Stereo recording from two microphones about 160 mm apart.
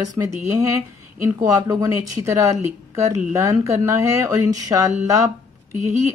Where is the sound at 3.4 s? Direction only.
20° right (ahead or behind).